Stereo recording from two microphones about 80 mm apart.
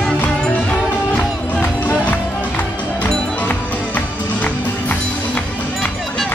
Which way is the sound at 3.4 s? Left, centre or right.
Left.